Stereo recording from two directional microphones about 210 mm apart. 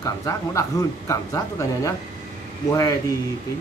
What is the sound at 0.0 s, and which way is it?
Speech, 15° left (ahead or behind).